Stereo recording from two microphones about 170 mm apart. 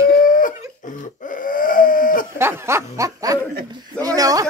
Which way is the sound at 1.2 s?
55° left (ahead or behind).